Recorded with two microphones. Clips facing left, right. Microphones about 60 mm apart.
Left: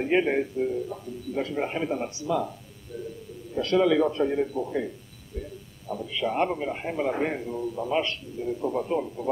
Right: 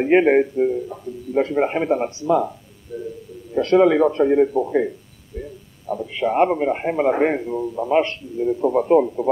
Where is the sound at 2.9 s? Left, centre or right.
Centre.